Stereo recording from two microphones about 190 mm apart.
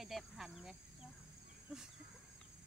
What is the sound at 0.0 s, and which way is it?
Cricket, centre (ahead or behind).